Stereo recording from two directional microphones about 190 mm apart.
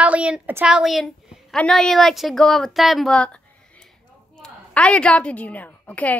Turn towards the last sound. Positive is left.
turn(degrees=10)  # may be behind; listen again after turning